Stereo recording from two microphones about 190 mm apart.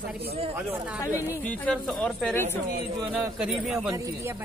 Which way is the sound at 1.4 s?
10° left (ahead or behind).